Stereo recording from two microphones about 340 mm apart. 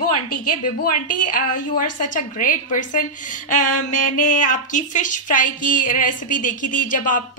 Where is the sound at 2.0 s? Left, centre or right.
Left.